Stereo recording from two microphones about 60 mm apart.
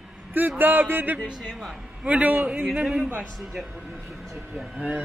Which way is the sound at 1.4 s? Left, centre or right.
Centre.